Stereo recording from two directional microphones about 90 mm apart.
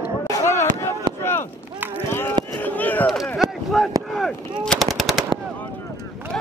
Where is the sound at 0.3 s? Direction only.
35° left (ahead or behind).